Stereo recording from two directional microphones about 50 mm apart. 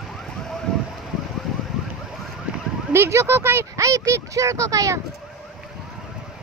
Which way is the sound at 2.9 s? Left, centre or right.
Right.